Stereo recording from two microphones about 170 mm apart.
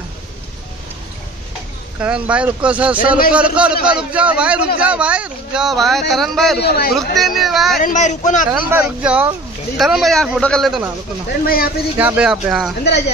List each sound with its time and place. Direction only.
2.0 s speech: 5° right (ahead or behind)
6.6 s a man's voice: 70° left (ahead or behind)
7.0 s speech: centre (ahead or behind)
7.8 s a man's voice: 45° left (ahead or behind)
8.5 s speech: 15° right (ahead or behind); by 10.8 s 5° left (ahead or behind)
11.4 s speech: 60° left (ahead or behind)
12.0 s speech: 10° right (ahead or behind)